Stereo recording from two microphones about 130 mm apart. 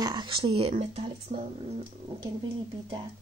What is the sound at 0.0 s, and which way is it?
Speech, 35° right (ahead or behind).